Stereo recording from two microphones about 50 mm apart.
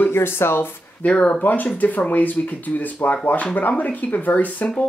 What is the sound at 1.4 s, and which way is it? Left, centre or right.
Speech, left.